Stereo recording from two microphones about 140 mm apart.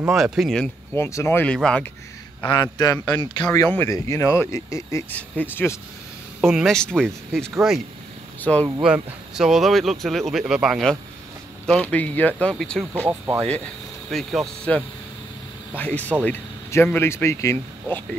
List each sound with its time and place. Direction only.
0.1 s speech: centre (ahead or behind)
0.9 s speech: 20° left (ahead or behind)
2.4 s speech: 35° left (ahead or behind)
3.5 s speech: 15° left (ahead or behind)
6.4 s speech: centre (ahead or behind)
8.8 s speech: 5° right (ahead or behind)
12.9 s speech: 10° right (ahead or behind)
14.1 s speech: centre (ahead or behind)